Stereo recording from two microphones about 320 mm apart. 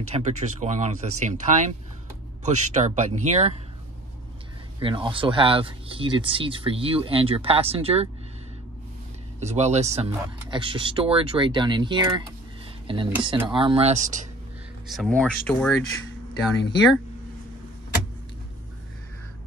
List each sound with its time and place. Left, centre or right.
0.1 s speech: right
4.7 s speech: centre
9.4 s speech: right
14.9 s speech: centre